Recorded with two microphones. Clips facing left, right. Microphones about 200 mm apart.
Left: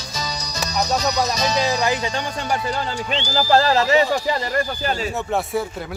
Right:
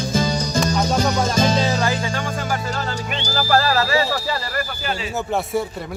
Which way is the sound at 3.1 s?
20° left (ahead or behind).